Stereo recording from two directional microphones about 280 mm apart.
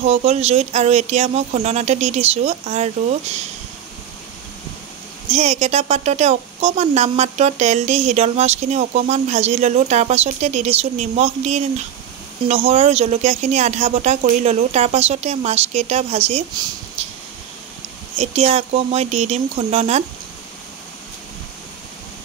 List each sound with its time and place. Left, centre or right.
0.0 s a woman's voice: right
5.3 s a woman's voice: right
18.1 s a woman's voice: right